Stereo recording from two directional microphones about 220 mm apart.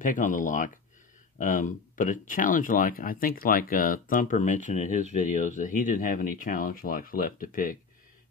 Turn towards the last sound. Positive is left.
turn(degrees=40)  # may be behind; listen again after turning